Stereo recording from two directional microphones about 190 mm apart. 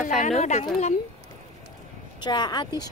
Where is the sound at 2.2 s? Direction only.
25° left (ahead or behind).